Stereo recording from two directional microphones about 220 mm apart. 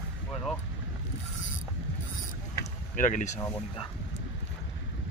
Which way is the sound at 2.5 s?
35° left (ahead or behind).